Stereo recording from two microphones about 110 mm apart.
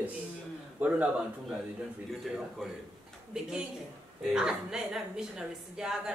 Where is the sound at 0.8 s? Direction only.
15° right (ahead or behind).